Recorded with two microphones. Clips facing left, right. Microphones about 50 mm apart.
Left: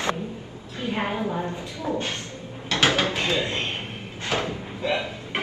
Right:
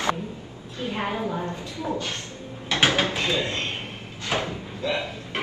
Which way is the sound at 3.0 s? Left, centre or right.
Left.